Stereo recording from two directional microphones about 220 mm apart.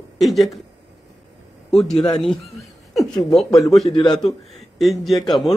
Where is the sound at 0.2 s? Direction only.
Centre (ahead or behind).